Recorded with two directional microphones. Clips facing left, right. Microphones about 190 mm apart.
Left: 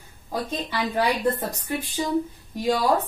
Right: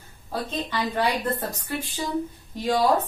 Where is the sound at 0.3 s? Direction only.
10° left (ahead or behind).